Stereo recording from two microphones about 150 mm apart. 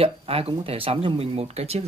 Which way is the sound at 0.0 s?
40° right (ahead or behind).